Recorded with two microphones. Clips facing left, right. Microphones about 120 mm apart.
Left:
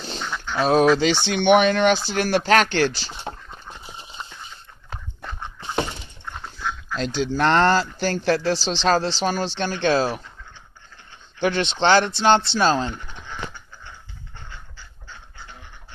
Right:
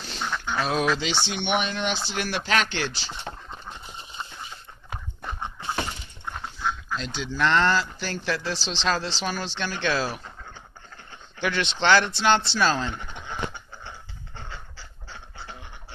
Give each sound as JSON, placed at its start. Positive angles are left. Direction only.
{"t": 0.6, "sound": "speech", "side_deg": 40}
{"t": 2.0, "sound": "speech", "side_deg": 45}
{"t": 7.0, "sound": "speech", "side_deg": 40}
{"t": 11.3, "sound": "speech", "side_deg": 30}
{"t": 14.3, "sound": "a sound", "side_deg": -90}